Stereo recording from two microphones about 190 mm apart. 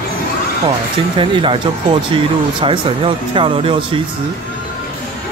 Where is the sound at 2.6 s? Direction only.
25° right (ahead or behind).